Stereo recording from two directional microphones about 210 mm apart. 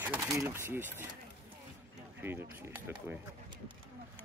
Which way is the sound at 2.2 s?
10° right (ahead or behind).